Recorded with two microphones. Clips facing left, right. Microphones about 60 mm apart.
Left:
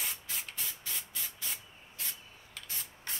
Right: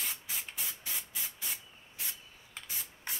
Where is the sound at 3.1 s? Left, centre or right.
Centre.